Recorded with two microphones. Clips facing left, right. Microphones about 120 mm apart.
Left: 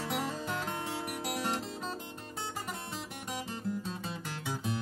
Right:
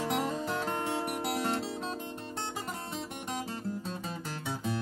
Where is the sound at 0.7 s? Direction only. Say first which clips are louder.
Right 4 dB; 35° right (ahead or behind).